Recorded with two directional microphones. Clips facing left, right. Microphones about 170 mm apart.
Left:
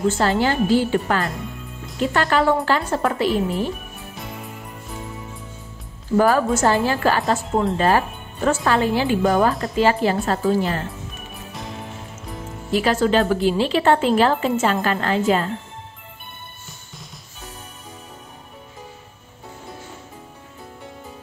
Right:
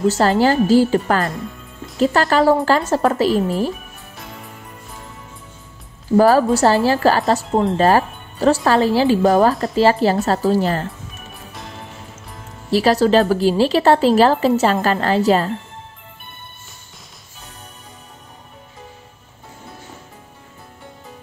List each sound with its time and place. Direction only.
0.1 s a woman's voice: 40° right (ahead or behind)
6.1 s a woman's voice: 35° right (ahead or behind)
12.7 s a woman's voice: 35° right (ahead or behind)